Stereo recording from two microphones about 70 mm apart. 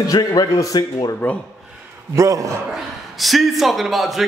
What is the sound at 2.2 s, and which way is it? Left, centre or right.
Speech, right.